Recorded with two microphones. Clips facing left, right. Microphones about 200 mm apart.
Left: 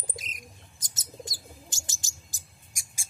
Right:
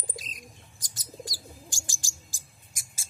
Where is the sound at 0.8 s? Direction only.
25° left (ahead or behind).